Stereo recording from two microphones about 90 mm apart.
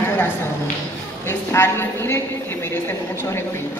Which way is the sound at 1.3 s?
30° left (ahead or behind).